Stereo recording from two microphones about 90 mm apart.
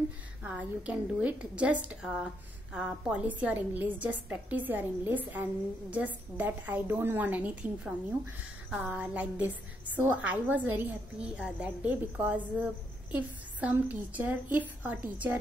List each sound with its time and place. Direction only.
0.4 s a woman's voice: 15° right (ahead or behind)